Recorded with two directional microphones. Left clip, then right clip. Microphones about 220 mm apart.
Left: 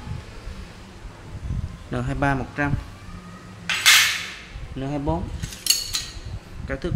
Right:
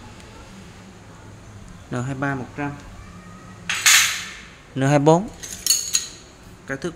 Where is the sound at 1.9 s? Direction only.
Centre (ahead or behind).